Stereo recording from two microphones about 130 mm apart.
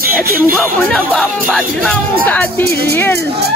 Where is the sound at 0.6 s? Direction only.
Centre (ahead or behind).